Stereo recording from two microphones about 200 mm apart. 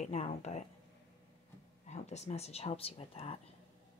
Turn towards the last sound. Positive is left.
turn(degrees=30)  # may be behind; listen again after turning